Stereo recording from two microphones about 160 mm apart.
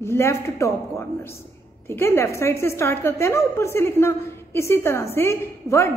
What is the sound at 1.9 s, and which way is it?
A woman's voice, 15° left (ahead or behind).